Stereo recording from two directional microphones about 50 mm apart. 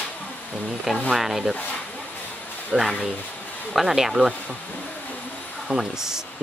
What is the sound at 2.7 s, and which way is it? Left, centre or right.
Speech, centre.